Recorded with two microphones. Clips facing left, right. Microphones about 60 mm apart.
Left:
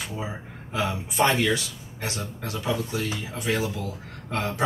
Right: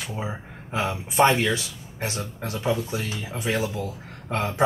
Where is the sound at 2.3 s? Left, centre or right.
Right.